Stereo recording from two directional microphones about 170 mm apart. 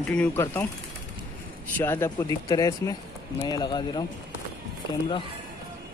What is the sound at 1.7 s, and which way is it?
Speech, 15° left (ahead or behind).